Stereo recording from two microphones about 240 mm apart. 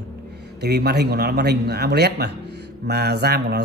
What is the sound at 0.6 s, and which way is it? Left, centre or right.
A man's voice, right.